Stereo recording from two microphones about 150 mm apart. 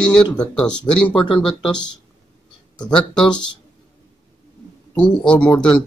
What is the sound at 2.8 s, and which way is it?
Speech, 5° left (ahead or behind).